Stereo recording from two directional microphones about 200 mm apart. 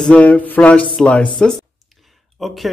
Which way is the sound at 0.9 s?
5° left (ahead or behind).